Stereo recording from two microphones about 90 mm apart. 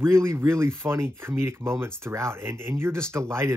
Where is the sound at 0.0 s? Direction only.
30° right (ahead or behind).